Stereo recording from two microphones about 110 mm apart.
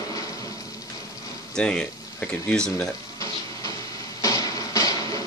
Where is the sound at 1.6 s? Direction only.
5° left (ahead or behind).